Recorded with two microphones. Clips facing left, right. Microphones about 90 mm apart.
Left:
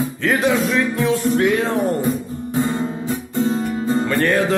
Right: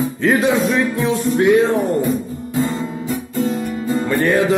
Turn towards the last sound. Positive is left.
turn(degrees=-15)  # may be behind; listen again after turning